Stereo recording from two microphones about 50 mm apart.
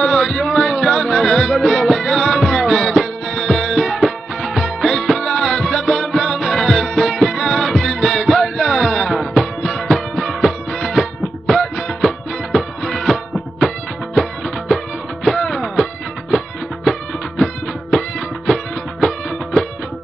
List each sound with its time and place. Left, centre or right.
0.0 s music: centre
15.2 s music: centre
18.5 s music: centre